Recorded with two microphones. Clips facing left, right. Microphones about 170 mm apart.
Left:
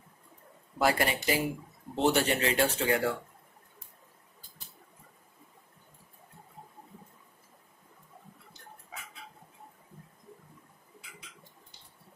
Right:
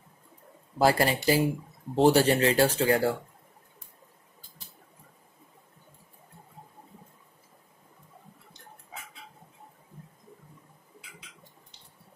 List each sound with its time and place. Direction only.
0.7 s speech: 35° right (ahead or behind)